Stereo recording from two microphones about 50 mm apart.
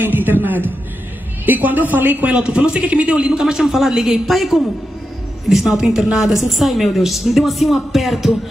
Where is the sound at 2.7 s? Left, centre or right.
Right.